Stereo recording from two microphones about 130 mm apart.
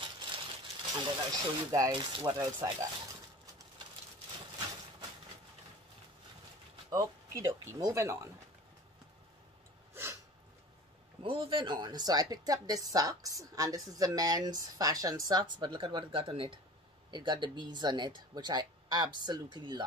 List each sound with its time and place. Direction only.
0.0 s a sound: 40° right (ahead or behind)
0.9 s speech: 35° right (ahead or behind)
2.3 s speech: 25° right (ahead or behind)
6.9 s speech: 25° right (ahead or behind)
11.2 s speech: 40° right (ahead or behind)